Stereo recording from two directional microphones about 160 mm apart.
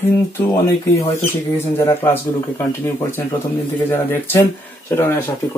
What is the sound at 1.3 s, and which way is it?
Speech, 15° left (ahead or behind).